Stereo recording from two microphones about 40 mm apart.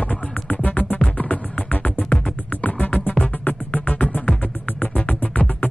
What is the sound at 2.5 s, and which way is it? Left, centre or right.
Music, left.